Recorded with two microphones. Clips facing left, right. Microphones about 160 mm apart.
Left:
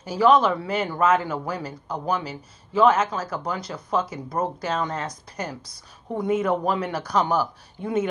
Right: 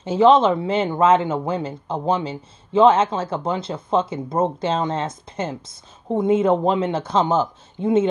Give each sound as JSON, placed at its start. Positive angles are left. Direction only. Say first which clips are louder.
{"t": 0.0, "sound": "speech", "louder": "right 4 dB", "side_deg": -25}